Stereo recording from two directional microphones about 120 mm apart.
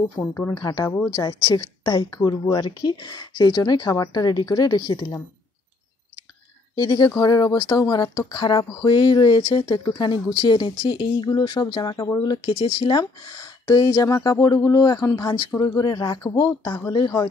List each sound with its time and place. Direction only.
0.2 s a woman's voice: 20° left (ahead or behind)
1.1 s speech: 35° left (ahead or behind)
6.8 s speech: 35° left (ahead or behind)